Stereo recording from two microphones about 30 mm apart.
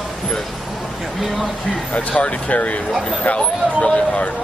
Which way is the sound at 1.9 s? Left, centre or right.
Left.